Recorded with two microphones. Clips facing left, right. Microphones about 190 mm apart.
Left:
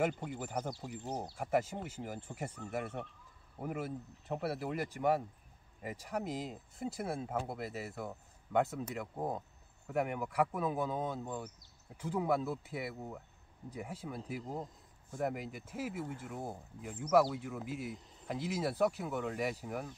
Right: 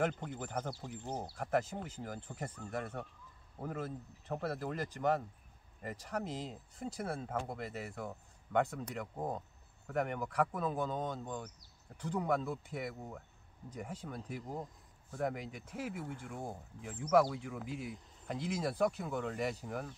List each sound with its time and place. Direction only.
0.0 s speech: 10° left (ahead or behind)
14.4 s speech: 25° left (ahead or behind)
15.0 s speech: 5° left (ahead or behind)